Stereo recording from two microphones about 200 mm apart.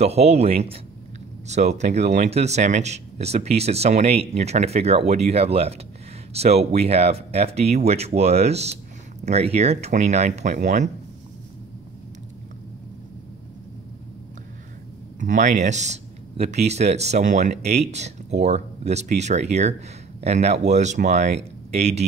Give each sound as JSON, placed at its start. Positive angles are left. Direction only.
{"t": 0.0, "sound": "speech", "side_deg": -30}
{"t": 15.1, "sound": "speech", "side_deg": -40}